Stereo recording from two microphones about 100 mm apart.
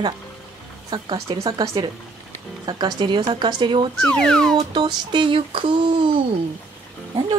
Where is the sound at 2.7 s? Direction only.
45° right (ahead or behind).